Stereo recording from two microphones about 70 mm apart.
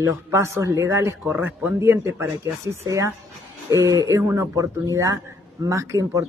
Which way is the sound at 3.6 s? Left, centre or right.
Right.